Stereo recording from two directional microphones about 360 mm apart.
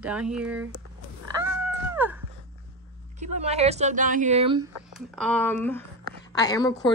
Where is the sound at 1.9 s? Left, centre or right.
Centre.